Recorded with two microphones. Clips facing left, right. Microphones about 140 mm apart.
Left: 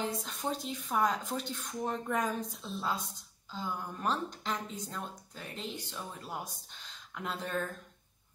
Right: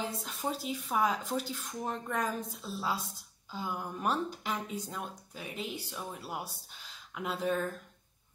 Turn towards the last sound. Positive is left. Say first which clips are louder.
# right 4 dB
turn(degrees=-5)  # may be behind; listen again after turning